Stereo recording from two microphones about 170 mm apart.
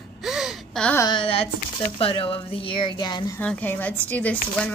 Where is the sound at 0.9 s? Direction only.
25° left (ahead or behind).